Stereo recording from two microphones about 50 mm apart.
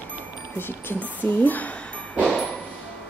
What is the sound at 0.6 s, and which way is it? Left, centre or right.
Speech, left.